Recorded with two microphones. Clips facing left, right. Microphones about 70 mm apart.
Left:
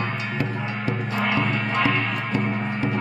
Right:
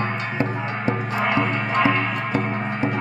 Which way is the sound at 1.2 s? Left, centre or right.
Centre.